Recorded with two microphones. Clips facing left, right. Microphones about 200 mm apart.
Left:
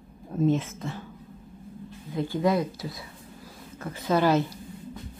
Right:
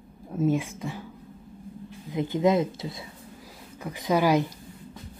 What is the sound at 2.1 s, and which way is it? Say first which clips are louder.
Speech: right 2 dB; 20° right (ahead or behind).